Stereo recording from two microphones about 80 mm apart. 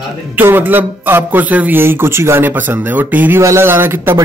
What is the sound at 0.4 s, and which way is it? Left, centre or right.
A man's voice, right.